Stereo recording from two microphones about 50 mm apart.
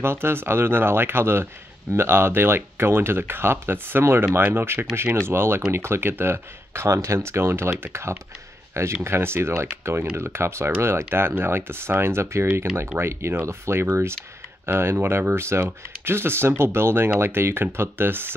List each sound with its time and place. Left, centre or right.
0.0 s speech: right
9.0 s speech: right
13.0 s speech: right